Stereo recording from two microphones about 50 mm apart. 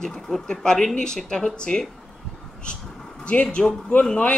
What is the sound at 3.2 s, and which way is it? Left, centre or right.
Speech, left.